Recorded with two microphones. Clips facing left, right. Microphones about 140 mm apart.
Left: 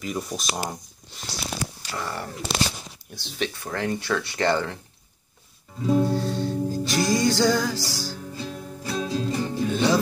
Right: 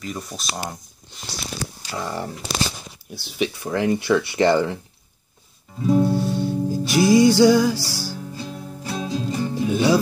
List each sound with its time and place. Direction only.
0.0 s speech: 5° left (ahead or behind)
1.9 s speech: 15° right (ahead or behind)
5.9 s music: 10° right (ahead or behind)